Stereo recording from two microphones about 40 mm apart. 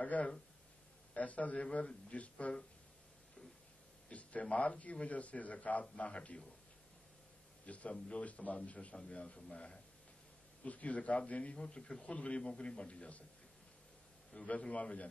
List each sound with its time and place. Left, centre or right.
0.0 s a man's voice: left
4.1 s a man's voice: left
7.6 s a man's voice: left
10.6 s a man's voice: left
14.6 s a man's voice: left